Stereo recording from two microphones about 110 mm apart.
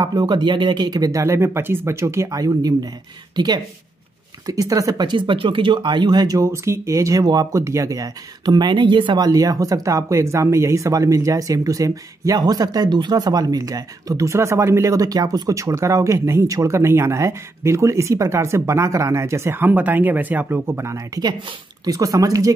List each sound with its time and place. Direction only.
0.0 s speech: 40° right (ahead or behind)